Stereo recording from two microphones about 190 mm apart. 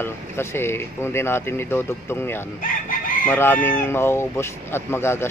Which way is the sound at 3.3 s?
10° left (ahead or behind).